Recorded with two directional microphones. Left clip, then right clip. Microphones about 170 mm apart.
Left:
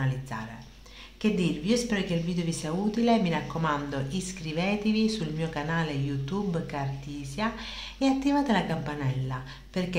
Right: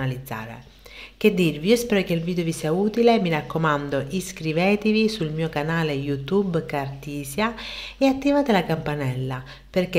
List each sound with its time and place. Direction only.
0.0 s a woman's voice: 35° right (ahead or behind)